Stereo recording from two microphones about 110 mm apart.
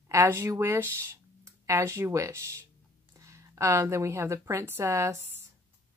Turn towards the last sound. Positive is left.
turn(degrees=-25)  # may be behind; listen again after turning